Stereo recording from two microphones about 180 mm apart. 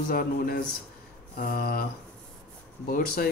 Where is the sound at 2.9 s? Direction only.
55° left (ahead or behind).